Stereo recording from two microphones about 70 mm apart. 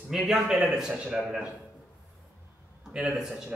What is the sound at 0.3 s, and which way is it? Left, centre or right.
A man's voice, centre.